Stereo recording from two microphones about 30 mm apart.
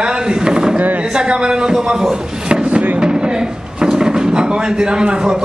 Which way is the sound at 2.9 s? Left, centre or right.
Right.